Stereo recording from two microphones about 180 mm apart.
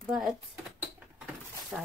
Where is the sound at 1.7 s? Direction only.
Centre (ahead or behind).